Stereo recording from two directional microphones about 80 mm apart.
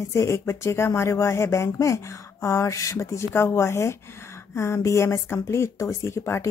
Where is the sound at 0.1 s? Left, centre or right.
Left.